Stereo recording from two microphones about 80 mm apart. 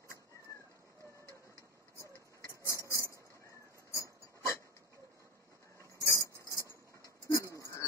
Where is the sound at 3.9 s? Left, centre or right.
Left.